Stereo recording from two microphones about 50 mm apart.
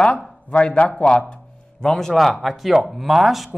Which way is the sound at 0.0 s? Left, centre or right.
Left.